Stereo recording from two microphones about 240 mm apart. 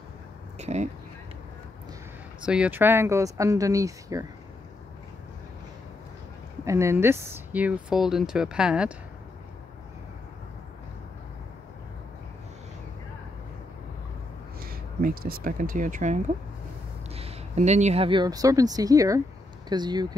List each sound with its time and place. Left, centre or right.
0.6 s a sound: right
2.4 s speech: centre
6.6 s speech: centre
14.6 s speech: right; by 20.1 s centre